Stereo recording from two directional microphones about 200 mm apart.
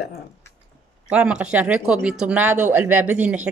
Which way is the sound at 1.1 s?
5° right (ahead or behind).